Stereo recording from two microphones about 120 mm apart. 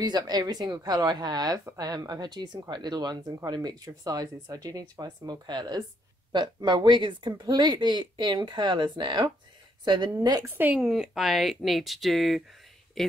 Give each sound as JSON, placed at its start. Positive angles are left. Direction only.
{"t": 0.0, "sound": "speech", "side_deg": -35}
{"t": 10.5, "sound": "a woman's voice", "side_deg": -15}
{"t": 10.8, "sound": "speech", "side_deg": -5}